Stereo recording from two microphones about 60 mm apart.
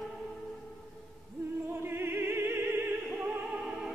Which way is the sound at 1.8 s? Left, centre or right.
Right.